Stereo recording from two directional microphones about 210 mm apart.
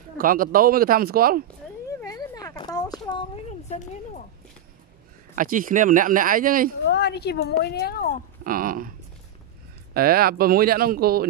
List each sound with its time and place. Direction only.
0.2 s speech: 40° right (ahead or behind)
2.1 s a sound: 15° left (ahead or behind)
3.1 s speech: 25° left (ahead or behind)
5.3 s speech: 40° right (ahead or behind)
6.9 s a woman's voice: 50° left (ahead or behind)
8.5 s speech: 40° right (ahead or behind)
9.9 s speech: 45° right (ahead or behind)